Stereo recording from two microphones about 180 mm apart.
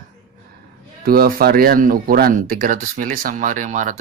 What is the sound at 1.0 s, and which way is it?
Speech, 55° right (ahead or behind).